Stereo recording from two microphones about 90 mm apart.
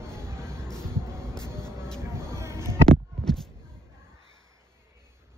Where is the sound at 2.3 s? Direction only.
30° right (ahead or behind).